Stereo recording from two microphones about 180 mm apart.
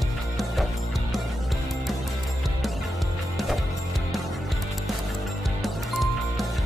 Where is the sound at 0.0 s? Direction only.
Centre (ahead or behind).